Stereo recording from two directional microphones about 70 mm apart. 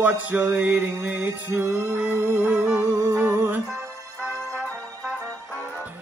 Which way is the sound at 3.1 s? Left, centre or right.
Right.